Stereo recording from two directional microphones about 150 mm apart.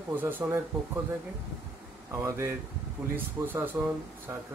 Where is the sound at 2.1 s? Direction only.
20° right (ahead or behind).